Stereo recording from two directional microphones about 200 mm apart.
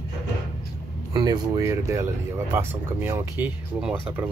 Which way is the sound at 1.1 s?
20° right (ahead or behind).